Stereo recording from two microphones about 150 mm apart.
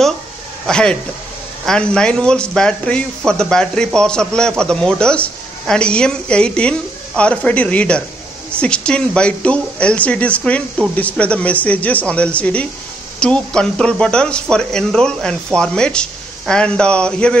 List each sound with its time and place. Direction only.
0.7 s speech: 5° left (ahead or behind)